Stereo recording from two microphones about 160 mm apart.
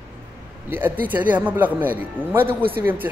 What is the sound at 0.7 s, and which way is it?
A man's voice, 10° right (ahead or behind).